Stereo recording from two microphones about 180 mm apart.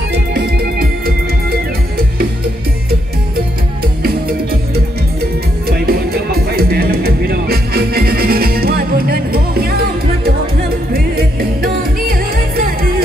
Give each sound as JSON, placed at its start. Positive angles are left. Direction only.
{"t": 0.3, "sound": "music", "side_deg": -55}
{"t": 5.7, "sound": "music", "side_deg": -55}
{"t": 10.9, "sound": "music", "side_deg": -55}